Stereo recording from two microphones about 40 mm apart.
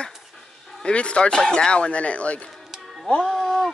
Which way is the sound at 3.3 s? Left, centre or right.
Centre.